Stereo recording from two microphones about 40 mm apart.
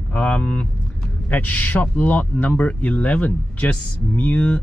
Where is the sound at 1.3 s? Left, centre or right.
Left.